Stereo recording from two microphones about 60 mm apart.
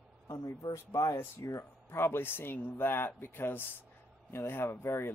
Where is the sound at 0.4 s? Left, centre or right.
Left.